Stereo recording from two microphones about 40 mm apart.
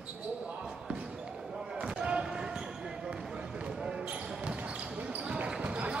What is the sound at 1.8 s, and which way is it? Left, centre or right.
Basketball bounce, right.